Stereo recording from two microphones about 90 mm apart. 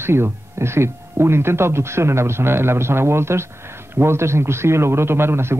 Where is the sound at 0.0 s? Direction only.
25° right (ahead or behind).